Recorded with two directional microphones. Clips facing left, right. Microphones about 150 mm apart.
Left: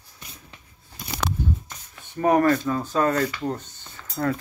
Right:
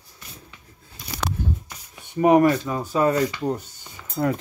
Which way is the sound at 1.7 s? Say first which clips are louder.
Right 1 dB; 15° right (ahead or behind).